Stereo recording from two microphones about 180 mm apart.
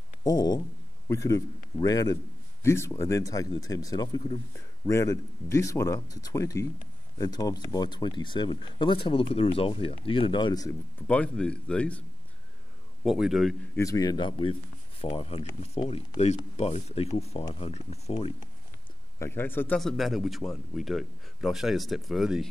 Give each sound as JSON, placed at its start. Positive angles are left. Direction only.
{"t": 0.2, "sound": "speech", "side_deg": 20}
{"t": 13.0, "sound": "a man's voice", "side_deg": 0}
{"t": 13.7, "sound": "speech", "side_deg": 20}
{"t": 15.8, "sound": "speech", "side_deg": 25}
{"t": 16.2, "sound": "speech", "side_deg": 35}
{"t": 19.1, "sound": "a man's voice", "side_deg": 10}